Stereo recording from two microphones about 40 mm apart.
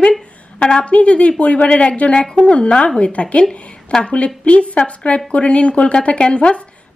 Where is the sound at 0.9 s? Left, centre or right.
Left.